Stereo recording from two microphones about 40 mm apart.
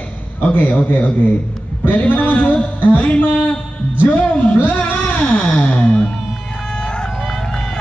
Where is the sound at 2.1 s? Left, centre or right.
Left.